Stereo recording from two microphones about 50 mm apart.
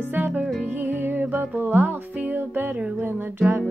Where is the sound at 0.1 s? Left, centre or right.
Right.